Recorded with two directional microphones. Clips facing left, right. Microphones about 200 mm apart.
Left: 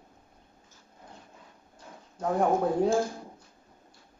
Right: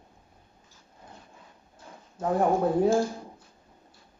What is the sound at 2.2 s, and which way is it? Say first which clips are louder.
Speech: right 1 dB; 5° right (ahead or behind).